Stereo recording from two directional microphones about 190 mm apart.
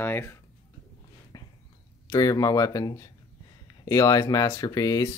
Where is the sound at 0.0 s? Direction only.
10° left (ahead or behind).